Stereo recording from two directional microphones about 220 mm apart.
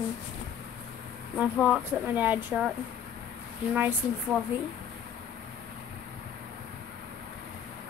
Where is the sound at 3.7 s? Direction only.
10° right (ahead or behind).